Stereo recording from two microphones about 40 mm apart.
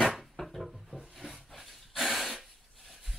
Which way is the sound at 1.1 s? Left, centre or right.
Centre.